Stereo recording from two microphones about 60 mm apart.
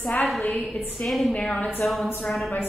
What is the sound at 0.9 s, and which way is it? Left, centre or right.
Speech, centre.